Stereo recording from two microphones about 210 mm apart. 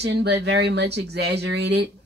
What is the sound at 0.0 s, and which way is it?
Speech, 55° right (ahead or behind).